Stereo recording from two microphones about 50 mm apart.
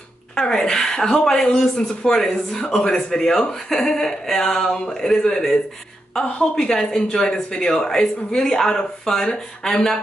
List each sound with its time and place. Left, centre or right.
0.4 s speech: centre